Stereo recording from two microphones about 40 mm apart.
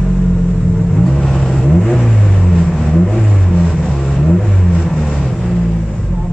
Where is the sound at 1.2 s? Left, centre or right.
Centre.